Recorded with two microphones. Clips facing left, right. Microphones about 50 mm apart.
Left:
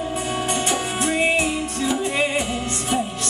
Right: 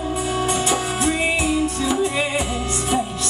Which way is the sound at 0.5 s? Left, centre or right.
Left.